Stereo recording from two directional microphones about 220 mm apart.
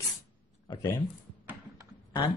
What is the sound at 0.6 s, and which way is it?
Speech, 15° left (ahead or behind).